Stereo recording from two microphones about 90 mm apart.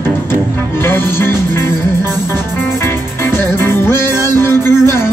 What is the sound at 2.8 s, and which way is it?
Music, 25° left (ahead or behind).